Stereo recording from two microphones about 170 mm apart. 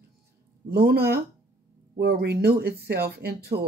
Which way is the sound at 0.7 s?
65° right (ahead or behind).